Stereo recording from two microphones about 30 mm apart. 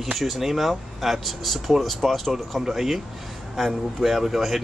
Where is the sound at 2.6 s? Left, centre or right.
Centre.